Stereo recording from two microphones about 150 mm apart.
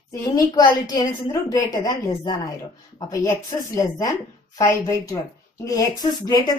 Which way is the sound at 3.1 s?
20° left (ahead or behind).